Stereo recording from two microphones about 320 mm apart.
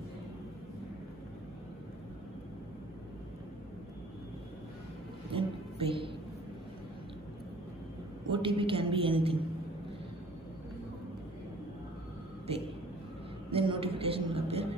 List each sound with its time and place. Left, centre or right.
5.3 s a woman's voice: centre
8.3 s a woman's voice: centre
13.5 s a sound: centre